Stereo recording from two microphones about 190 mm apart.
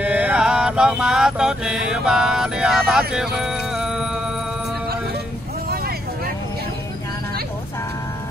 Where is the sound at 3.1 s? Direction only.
5° right (ahead or behind).